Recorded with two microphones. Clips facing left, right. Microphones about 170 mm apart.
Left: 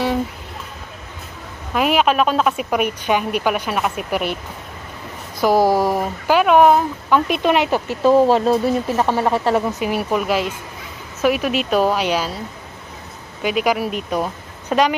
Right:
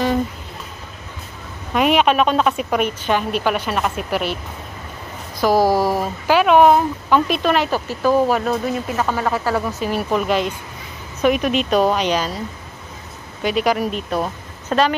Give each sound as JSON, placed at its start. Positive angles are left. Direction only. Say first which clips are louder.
{"t": 1.7, "sound": "a woman's voice", "louder": "right 1 dB", "side_deg": 0}
{"t": 5.4, "sound": "a woman's voice", "louder": "even", "side_deg": 0}
{"t": 13.4, "sound": "speech", "louder": "even", "side_deg": 10}